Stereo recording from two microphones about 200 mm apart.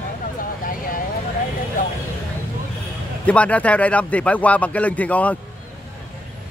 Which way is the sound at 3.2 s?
5° left (ahead or behind).